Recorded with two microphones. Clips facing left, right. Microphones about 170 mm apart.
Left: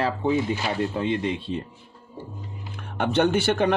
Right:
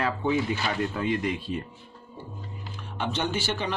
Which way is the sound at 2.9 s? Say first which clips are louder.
Left 8 dB; 55° left (ahead or behind).